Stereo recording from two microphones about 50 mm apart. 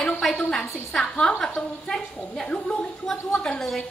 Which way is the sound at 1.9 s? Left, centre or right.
Centre.